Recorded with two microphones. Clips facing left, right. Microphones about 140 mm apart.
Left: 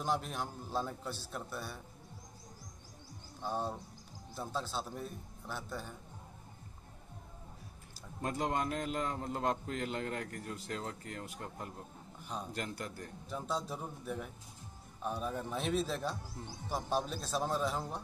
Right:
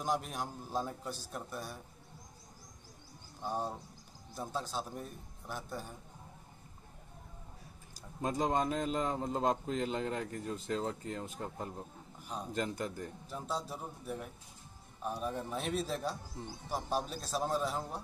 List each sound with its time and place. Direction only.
0.0 s a man's voice: 10° right (ahead or behind)
1.1 s a man's voice: 45° right (ahead or behind)
3.4 s a man's voice: 10° right (ahead or behind)
8.2 s a man's voice: 20° right (ahead or behind)
12.2 s a sound: 5° right (ahead or behind)
12.5 s a man's voice: 25° right (ahead or behind)
13.3 s a man's voice: 5° right (ahead or behind)